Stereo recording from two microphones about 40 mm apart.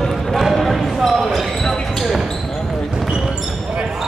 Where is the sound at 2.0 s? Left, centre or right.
Centre.